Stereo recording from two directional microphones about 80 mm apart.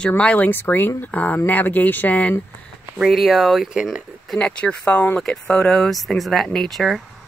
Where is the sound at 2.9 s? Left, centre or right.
Centre.